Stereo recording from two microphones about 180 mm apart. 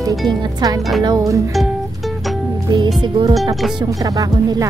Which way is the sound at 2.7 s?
25° right (ahead or behind).